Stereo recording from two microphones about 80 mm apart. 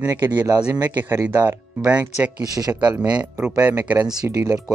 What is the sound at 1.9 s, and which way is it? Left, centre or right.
Speech, centre.